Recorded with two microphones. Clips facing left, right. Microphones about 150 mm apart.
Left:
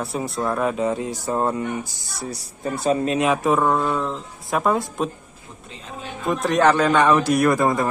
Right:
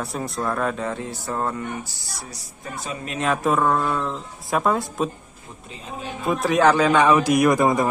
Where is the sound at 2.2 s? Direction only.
65° left (ahead or behind).